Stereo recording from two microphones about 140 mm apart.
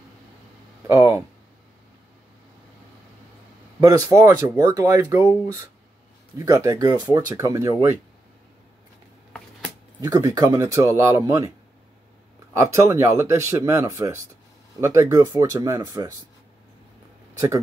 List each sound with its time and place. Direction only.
0.8 s speech: 20° right (ahead or behind)
3.8 s speech: 25° right (ahead or behind)
6.3 s speech: 25° right (ahead or behind)
9.9 s speech: 25° right (ahead or behind)
12.5 s speech: 20° right (ahead or behind)
17.3 s a sound: 20° right (ahead or behind)